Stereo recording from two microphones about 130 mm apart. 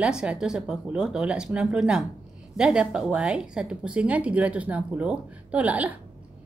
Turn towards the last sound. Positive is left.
turn(degrees=-10)  # may be behind; listen again after turning